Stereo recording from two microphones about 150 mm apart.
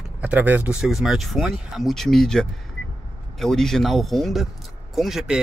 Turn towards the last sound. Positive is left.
turn(degrees=0)  # may be behind; listen again after turning